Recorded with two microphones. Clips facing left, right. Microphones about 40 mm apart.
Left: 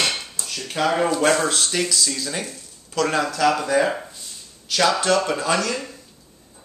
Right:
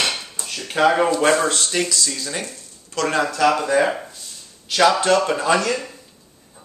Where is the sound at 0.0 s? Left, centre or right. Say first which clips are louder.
Right 1 dB; centre.